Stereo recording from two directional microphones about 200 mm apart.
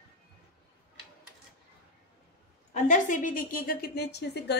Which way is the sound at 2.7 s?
40° left (ahead or behind).